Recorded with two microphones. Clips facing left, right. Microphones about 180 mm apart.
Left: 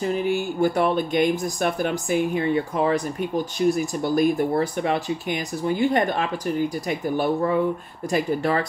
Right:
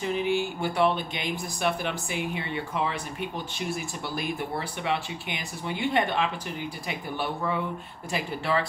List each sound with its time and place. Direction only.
0.0 s speech: 40° left (ahead or behind)